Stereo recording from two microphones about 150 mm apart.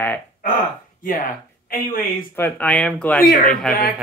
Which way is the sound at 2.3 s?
10° left (ahead or behind).